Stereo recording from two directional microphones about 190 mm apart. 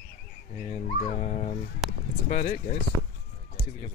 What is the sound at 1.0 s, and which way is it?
Speech, 35° left (ahead or behind).